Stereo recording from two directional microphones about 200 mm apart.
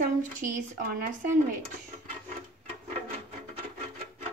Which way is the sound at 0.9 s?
50° right (ahead or behind).